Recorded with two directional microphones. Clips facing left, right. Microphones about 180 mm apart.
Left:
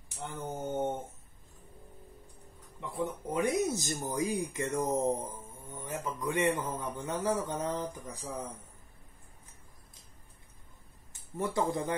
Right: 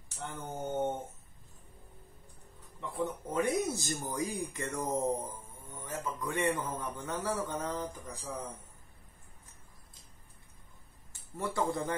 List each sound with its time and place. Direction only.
0.4 s a sound: 10° left (ahead or behind)
2.8 s speech: 15° left (ahead or behind)
11.3 s speech: 20° left (ahead or behind)